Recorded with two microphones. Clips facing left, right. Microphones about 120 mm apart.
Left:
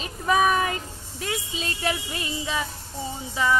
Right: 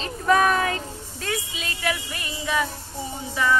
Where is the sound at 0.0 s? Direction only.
5° left (ahead or behind).